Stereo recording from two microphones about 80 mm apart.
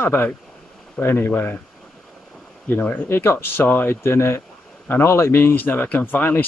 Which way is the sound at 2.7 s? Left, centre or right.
Left.